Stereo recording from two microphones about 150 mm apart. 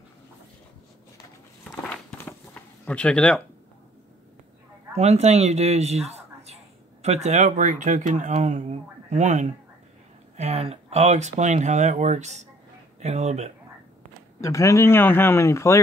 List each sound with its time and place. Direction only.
1.6 s walk: 5° left (ahead or behind)
2.1 s a sound: 10° left (ahead or behind)
4.9 s speech: 45° right (ahead or behind)
14.4 s speech: 20° left (ahead or behind)